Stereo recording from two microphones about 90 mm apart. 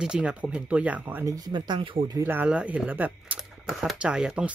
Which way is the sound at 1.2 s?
40° right (ahead or behind).